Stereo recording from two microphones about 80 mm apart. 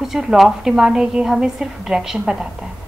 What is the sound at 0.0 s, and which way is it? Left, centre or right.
A woman's voice, centre.